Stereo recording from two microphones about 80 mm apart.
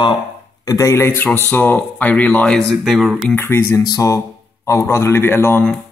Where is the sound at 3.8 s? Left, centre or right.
Left.